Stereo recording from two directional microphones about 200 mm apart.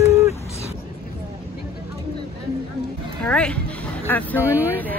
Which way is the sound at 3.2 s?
5° left (ahead or behind).